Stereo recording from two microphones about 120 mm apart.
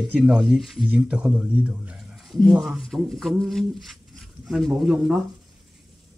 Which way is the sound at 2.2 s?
5° left (ahead or behind).